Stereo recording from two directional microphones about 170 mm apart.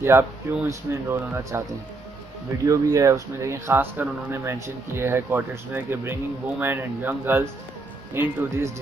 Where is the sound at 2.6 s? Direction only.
20° right (ahead or behind).